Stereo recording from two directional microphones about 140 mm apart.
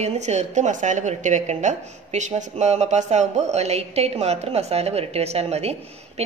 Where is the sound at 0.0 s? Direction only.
50° right (ahead or behind).